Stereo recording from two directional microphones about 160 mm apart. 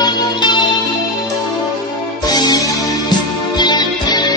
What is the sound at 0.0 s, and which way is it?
Music, 30° left (ahead or behind).